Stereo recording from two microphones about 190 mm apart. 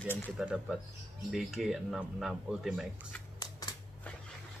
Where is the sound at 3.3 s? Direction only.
20° left (ahead or behind).